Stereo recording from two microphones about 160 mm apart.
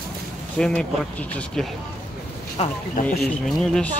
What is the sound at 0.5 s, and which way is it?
Speech, 5° left (ahead or behind).